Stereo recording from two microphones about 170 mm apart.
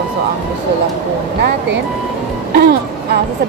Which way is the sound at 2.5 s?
75° right (ahead or behind).